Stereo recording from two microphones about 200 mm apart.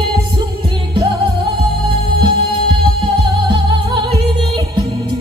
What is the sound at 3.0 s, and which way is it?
Music, 25° right (ahead or behind).